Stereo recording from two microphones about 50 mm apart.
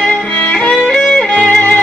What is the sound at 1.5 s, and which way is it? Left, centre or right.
Music, left.